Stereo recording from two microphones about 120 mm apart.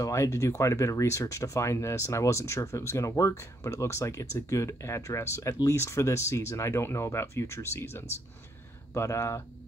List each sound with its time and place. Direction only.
0.0 s speech: 25° left (ahead or behind)